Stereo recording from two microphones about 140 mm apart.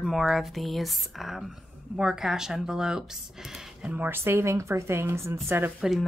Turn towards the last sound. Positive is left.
turn(degrees=0)  # may be behind; listen again after turning